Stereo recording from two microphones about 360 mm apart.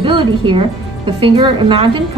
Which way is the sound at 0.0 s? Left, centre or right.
Centre.